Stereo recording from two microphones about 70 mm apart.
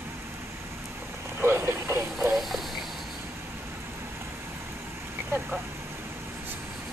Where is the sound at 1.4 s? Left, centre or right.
Right.